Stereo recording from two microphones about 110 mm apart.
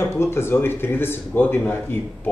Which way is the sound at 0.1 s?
20° left (ahead or behind).